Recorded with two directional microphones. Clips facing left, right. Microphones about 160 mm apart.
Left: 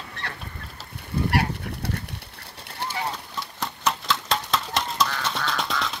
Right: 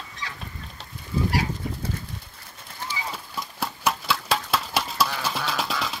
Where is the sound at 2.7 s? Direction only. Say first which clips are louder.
Left 4 dB; 65° left (ahead or behind).